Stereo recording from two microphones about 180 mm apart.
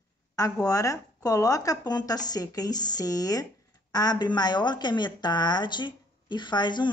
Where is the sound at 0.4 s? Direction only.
20° left (ahead or behind).